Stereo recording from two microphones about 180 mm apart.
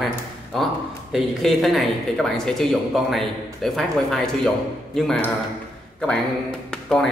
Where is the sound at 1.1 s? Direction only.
Centre (ahead or behind).